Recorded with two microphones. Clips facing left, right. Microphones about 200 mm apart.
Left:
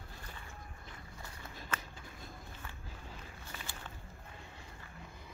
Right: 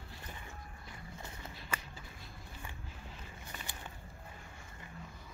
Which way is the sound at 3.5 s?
15° right (ahead or behind).